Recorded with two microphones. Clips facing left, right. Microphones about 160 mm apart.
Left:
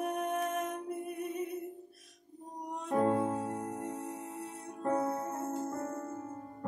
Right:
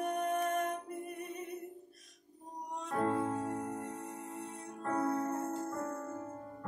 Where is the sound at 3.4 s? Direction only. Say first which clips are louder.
Left 1 dB; 5° left (ahead or behind).